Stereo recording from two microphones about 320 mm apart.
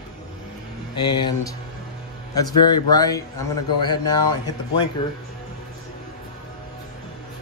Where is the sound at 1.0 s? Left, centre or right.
Centre.